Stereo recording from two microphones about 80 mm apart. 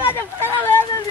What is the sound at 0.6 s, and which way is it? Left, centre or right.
Speech, left.